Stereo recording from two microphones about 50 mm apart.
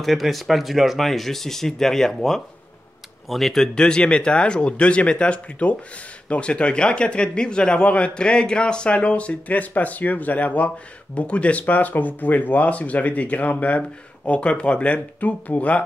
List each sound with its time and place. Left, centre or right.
0.0 s speech: centre; by 15.8 s left